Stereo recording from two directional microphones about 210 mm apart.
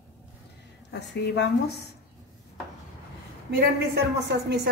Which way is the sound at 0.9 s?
55° left (ahead or behind).